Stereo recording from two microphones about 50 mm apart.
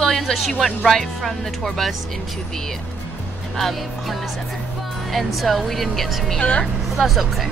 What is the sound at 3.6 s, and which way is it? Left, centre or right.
Speech, centre.